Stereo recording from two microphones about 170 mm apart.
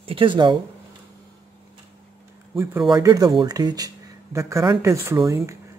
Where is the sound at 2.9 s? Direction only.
20° right (ahead or behind).